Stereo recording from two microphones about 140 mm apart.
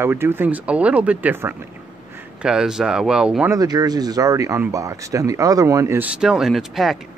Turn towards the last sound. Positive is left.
turn(degrees=0)  # may be behind; listen again after turning